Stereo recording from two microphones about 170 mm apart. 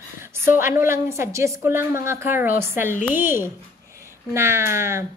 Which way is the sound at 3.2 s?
15° right (ahead or behind).